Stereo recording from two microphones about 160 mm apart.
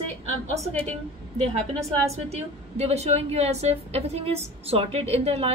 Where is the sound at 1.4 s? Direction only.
40° right (ahead or behind).